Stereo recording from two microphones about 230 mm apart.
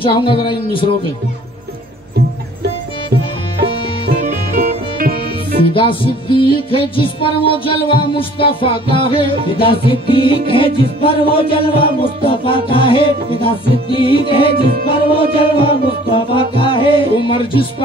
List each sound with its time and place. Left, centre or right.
0.0 s music: left
4.9 s music: right
5.7 s music: left